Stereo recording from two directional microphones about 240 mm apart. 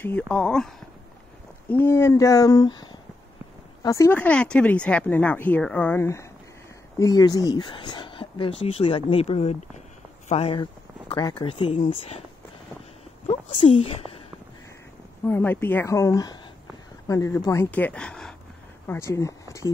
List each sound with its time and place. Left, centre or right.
0.0 s speech: centre; by 12.2 s left
13.3 s speech: left
15.2 s speech: centre